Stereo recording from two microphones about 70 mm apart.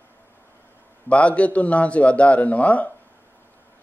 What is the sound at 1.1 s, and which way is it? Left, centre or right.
A man's voice, centre.